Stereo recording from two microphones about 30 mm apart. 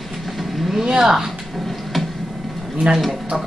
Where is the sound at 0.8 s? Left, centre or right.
Centre.